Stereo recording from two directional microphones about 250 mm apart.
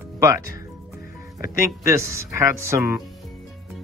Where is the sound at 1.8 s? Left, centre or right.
Centre.